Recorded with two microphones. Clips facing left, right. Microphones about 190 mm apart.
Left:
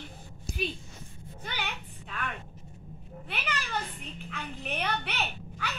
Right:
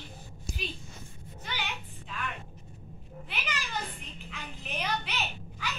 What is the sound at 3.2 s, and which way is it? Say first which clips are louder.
A woman's voice: left 3 dB; 60° left (ahead or behind).